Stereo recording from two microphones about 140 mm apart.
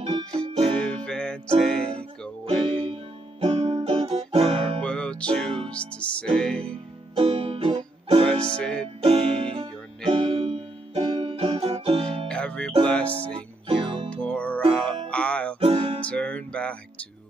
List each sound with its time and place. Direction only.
0.0 s music: 30° right (ahead or behind)
0.7 s music: 5° left (ahead or behind)
2.6 s music: 40° right (ahead or behind)
4.8 s music: 5° left (ahead or behind)
7.2 s music: 40° right (ahead or behind)
8.5 s music: 5° left (ahead or behind)
9.0 s music: 45° right (ahead or behind)
12.3 s music: 10° left (ahead or behind)
13.7 s music: 35° right (ahead or behind)
14.1 s music: 10° left (ahead or behind)
15.6 s music: 45° right (ahead or behind)
16.1 s music: 10° left (ahead or behind)